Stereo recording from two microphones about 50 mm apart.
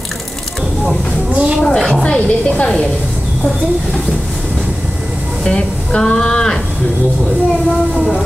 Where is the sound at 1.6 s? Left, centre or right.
Centre.